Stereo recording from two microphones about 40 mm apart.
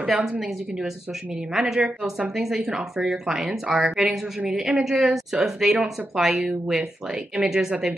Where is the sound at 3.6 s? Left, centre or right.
Right.